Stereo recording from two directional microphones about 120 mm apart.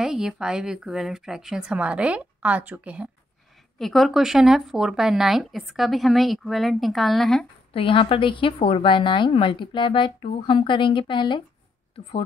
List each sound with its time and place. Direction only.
0.0 s speech: 5° right (ahead or behind)
3.7 s speech: centre (ahead or behind)
7.7 s a woman's voice: 45° left (ahead or behind)